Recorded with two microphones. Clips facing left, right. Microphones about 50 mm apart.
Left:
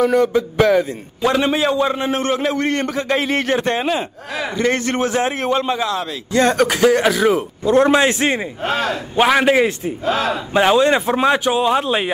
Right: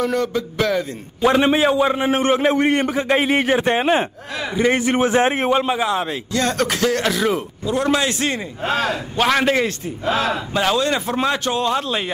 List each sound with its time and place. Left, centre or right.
0.0 s speech: centre
1.2 s a man's voice: centre
3.8 s speech: right
4.6 s a man's voice: centre
5.1 s a man's voice: right
6.3 s speech: left
6.6 s a man's voice: centre
7.6 s a man's voice: left